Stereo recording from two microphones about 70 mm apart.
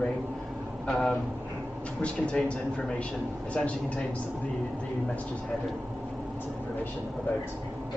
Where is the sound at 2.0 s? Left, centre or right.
Centre.